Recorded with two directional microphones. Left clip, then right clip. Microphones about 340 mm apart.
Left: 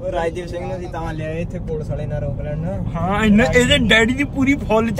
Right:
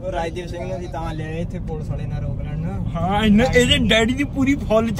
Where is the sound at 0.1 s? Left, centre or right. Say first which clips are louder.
Left 3 dB; centre.